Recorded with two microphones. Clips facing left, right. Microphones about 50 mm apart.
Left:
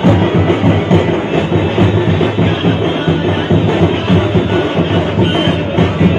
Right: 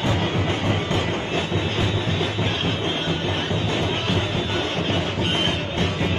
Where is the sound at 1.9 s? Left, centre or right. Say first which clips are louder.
Left 11 dB; left.